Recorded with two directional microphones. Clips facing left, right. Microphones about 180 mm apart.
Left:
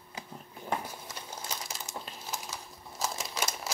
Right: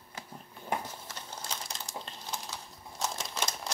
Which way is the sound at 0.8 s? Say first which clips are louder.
Left 1 dB; 10° left (ahead or behind).